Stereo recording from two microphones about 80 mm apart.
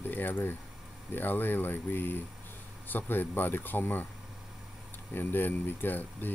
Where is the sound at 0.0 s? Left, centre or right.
Left.